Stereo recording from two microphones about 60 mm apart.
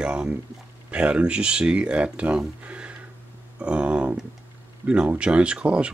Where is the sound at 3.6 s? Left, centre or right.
Centre.